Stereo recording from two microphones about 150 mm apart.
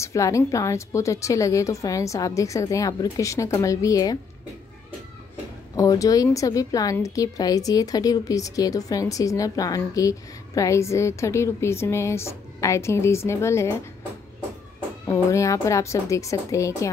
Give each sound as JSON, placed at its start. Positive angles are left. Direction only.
{"t": 0.0, "sound": "a woman's voice", "side_deg": 20}
{"t": 5.8, "sound": "a woman's voice", "side_deg": 25}
{"t": 15.0, "sound": "a woman's voice", "side_deg": 20}